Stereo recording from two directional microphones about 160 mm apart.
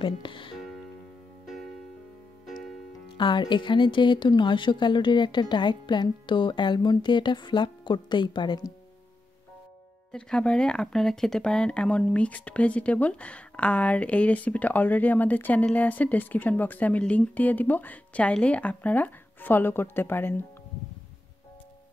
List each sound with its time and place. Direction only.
0.0 s speech: 30° left (ahead or behind)
1.4 s music: centre (ahead or behind)
3.2 s a woman's voice: 30° left (ahead or behind)
10.1 s speech: 5° left (ahead or behind)